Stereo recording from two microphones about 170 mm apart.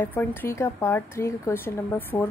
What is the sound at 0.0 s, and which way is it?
Speech, 10° left (ahead or behind).